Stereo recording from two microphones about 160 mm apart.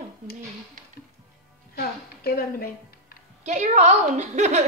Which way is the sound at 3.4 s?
45° right (ahead or behind).